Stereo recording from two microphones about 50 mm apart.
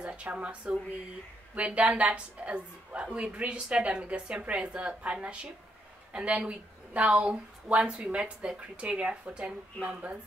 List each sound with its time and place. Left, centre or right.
0.0 s a woman's voice: right